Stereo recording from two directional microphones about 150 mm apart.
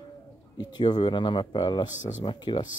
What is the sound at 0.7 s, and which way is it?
Speech, 30° left (ahead or behind).